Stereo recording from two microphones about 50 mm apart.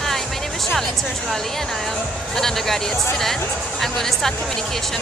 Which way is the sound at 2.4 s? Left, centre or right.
Centre.